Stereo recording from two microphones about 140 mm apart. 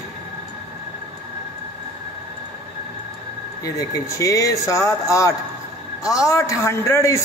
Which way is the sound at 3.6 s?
25° left (ahead or behind).